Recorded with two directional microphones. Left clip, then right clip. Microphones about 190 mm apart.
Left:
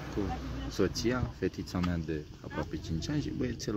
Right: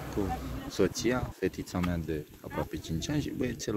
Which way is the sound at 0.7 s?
10° right (ahead or behind).